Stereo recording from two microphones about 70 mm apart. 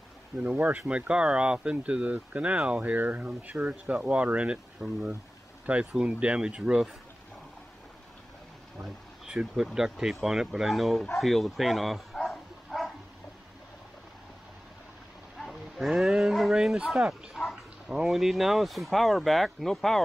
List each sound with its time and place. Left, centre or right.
0.4 s speech: right
8.7 s a sound: centre
9.8 s speech: centre
11.1 s bow-wow: centre
15.3 s a sound: centre
18.0 s speech: centre